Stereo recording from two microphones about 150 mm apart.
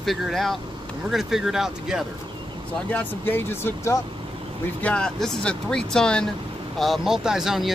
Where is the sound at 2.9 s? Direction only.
15° left (ahead or behind).